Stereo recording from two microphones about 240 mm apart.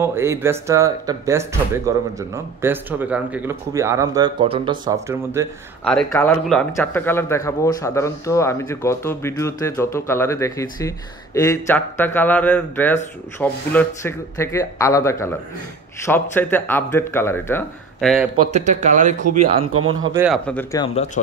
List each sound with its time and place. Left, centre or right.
0.0 s speech: centre
5.9 s speech: centre
18.5 s speech: right
20.2 s speech: centre
20.8 s speech: left